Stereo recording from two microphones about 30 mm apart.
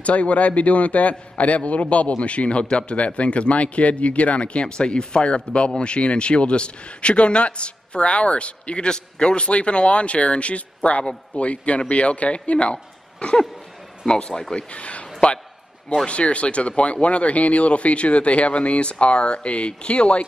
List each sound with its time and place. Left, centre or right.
0.0 s speech: left
4.6 s speech: left
8.8 s speech: left
12.7 s a sound: left
14.0 s a man's voice: left
14.7 s a man's voice: left
16.1 s speech: left